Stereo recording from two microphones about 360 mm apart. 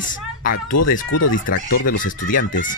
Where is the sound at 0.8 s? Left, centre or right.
Left.